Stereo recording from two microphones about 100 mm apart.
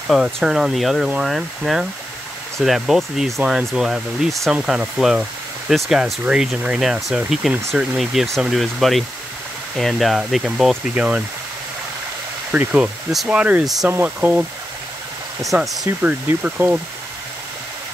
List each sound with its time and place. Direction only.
0.1 s speech: 5° right (ahead or behind)
12.5 s speech: 15° right (ahead or behind)
13.1 s speech: centre (ahead or behind)
13.4 s speech: 15° right (ahead or behind)
15.5 s speech: 15° right (ahead or behind)